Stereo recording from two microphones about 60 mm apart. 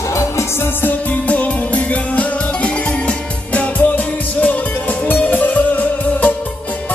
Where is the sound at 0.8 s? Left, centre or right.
Left.